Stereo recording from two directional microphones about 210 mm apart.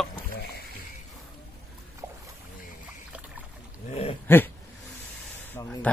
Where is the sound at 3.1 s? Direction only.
5° right (ahead or behind).